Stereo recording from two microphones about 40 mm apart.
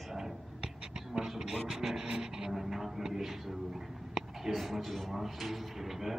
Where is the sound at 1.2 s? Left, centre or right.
Centre.